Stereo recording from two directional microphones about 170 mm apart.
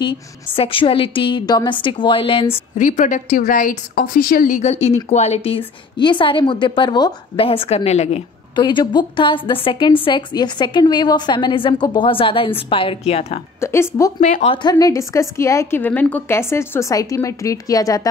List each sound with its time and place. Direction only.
0.0 s a woman's voice: 30° left (ahead or behind)
2.5 s a woman's voice: 45° left (ahead or behind)
8.5 s a woman's voice: 25° left (ahead or behind)
13.6 s a woman's voice: 15° left (ahead or behind)
14.2 s speech: 45° left (ahead or behind)
14.5 s a woman's voice: 25° left (ahead or behind)